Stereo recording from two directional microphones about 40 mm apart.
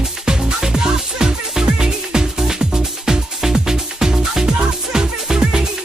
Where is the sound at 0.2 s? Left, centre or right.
Centre.